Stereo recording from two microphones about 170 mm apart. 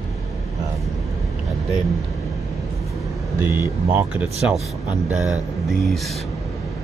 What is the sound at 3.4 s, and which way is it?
Speech, 15° right (ahead or behind).